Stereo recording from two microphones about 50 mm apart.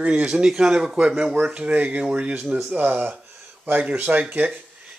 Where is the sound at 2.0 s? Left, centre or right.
Right.